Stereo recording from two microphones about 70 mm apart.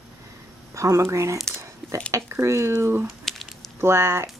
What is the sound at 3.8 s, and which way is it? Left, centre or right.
Speech, right.